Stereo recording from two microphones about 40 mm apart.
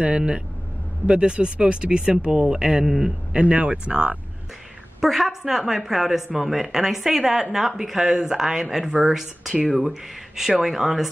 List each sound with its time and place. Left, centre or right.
0.0 s speech: right; by 3.1 s centre
3.3 s speech: right
5.0 s speech: centre